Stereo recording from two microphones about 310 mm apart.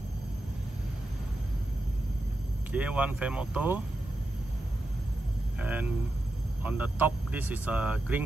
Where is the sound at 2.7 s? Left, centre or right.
Centre.